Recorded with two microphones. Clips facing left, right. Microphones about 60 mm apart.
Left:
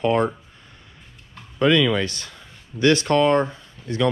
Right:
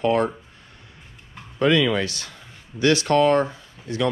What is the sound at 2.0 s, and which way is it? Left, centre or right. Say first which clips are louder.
Speech: left 1 dB; left.